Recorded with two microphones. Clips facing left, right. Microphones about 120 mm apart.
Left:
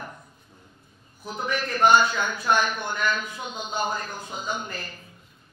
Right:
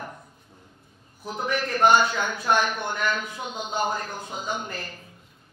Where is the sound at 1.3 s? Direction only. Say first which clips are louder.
Right 1 dB; 50° right (ahead or behind).